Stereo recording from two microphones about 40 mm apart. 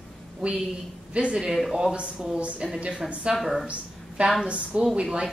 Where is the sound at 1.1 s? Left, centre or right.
Right.